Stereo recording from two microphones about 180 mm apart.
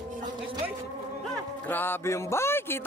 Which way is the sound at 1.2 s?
5° left (ahead or behind).